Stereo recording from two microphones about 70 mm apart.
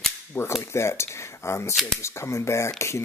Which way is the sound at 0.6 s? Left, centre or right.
Left.